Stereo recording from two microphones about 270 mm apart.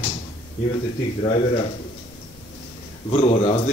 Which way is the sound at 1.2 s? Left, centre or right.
Left.